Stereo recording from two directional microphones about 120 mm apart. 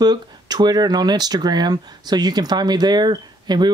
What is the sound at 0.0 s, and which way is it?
Speech, 35° right (ahead or behind).